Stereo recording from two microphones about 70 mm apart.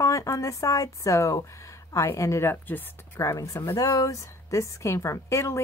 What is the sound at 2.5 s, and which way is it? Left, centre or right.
Speech, left.